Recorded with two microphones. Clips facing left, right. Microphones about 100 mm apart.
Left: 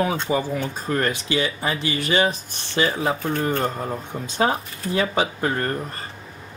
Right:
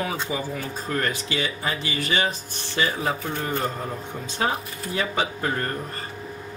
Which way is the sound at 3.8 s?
25° left (ahead or behind).